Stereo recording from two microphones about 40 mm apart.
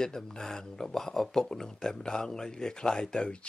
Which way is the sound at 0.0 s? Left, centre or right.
Centre.